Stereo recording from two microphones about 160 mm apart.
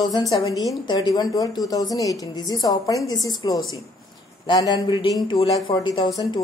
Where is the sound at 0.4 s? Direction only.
25° left (ahead or behind).